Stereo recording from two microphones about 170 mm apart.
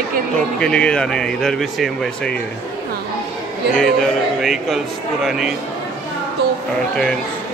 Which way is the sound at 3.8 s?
Centre (ahead or behind).